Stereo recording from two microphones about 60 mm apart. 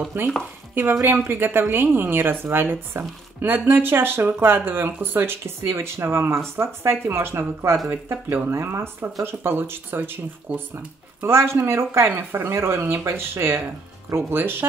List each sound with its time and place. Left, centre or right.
0.2 s speech: right
11.2 s speech: right